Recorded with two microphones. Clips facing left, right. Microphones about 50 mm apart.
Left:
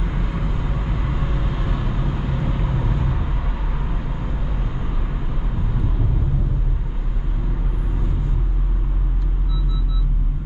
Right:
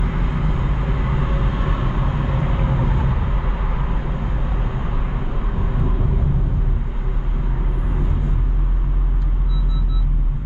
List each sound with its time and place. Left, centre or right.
0.0 s vehicle: centre